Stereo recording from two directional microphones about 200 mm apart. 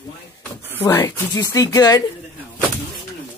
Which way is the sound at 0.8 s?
15° left (ahead or behind).